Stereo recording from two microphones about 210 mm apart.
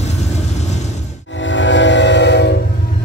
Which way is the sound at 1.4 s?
60° left (ahead or behind).